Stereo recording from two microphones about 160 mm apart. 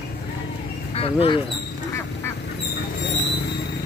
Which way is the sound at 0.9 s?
35° left (ahead or behind).